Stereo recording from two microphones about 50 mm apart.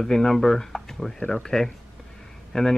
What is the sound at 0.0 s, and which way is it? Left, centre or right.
Speech, centre.